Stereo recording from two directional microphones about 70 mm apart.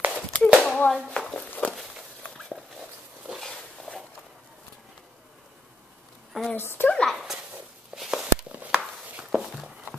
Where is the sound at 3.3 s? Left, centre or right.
Centre.